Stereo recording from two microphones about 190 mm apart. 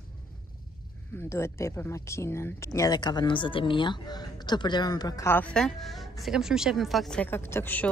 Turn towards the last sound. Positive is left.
turn(degrees=10)  # may be behind; listen again after turning